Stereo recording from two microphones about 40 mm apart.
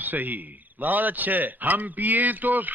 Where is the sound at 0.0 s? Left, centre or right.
Right.